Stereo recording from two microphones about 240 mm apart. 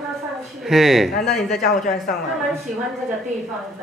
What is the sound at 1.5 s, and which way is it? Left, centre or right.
Speech, left.